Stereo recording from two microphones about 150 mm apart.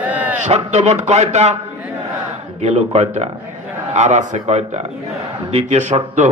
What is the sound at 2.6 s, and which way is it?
A man's voice, 45° right (ahead or behind).